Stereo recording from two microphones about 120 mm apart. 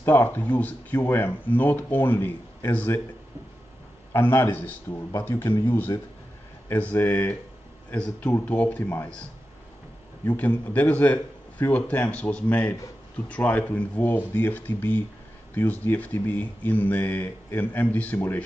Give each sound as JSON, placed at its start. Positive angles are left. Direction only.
{"t": 0.0, "sound": "speech", "side_deg": 20}
{"t": 4.1, "sound": "speech", "side_deg": 20}
{"t": 10.2, "sound": "speech", "side_deg": 15}